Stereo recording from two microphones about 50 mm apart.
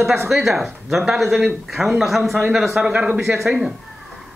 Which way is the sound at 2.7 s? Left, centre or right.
Right.